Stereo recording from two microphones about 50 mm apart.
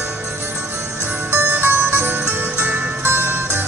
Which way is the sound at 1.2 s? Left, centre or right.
Right.